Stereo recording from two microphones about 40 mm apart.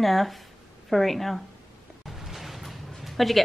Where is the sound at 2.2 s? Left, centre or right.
Centre.